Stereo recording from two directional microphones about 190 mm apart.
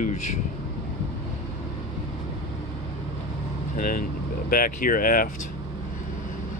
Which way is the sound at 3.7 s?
45° left (ahead or behind).